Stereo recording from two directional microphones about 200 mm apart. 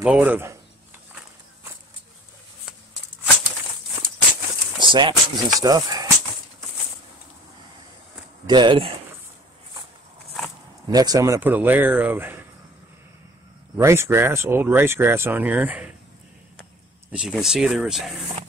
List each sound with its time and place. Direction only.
0.0 s speech: 5° right (ahead or behind)
4.7 s speech: 25° right (ahead or behind)
8.5 s speech: 25° right (ahead or behind)
10.9 s speech: 20° right (ahead or behind)
13.7 s speech: 10° right (ahead or behind)
17.1 s speech: 5° right (ahead or behind)